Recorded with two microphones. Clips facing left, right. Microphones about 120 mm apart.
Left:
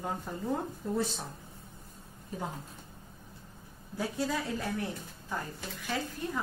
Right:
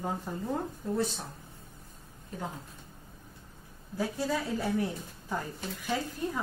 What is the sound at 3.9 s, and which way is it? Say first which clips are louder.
Speech: right 1 dB; centre (ahead or behind).